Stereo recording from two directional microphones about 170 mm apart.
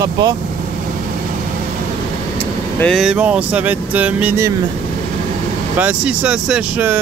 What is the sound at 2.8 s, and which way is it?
Speech, centre (ahead or behind).